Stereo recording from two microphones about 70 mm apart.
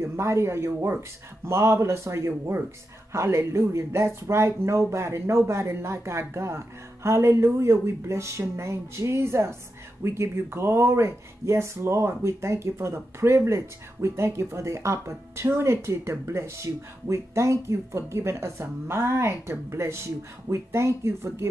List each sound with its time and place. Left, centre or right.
0.0 s speech: right